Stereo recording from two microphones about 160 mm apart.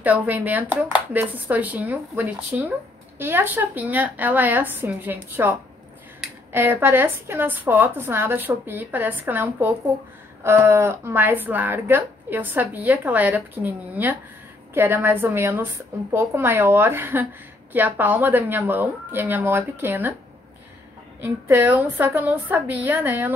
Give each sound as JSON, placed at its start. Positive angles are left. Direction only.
{"t": 0.0, "sound": "speech", "side_deg": -10}
{"t": 21.2, "sound": "speech", "side_deg": -10}